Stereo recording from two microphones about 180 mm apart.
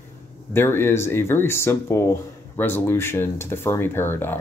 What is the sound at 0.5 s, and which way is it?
Speech, 10° left (ahead or behind).